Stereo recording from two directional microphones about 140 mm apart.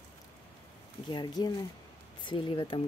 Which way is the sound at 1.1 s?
30° left (ahead or behind).